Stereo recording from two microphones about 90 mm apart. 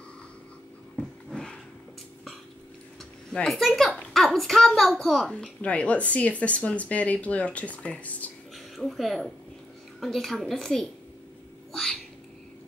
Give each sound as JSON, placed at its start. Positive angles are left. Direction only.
{"t": 1.3, "sound": "a sound", "side_deg": 10}
{"t": 3.3, "sound": "a child's voice", "side_deg": 5}
{"t": 8.5, "sound": "a child's voice", "side_deg": 0}
{"t": 11.7, "sound": "cat", "side_deg": 5}